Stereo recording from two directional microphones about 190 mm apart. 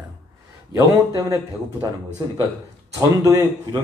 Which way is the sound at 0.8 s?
15° right (ahead or behind).